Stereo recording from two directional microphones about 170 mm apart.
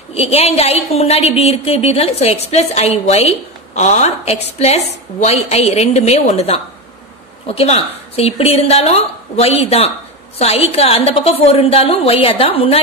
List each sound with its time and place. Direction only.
0.1 s a woman's voice: 35° left (ahead or behind)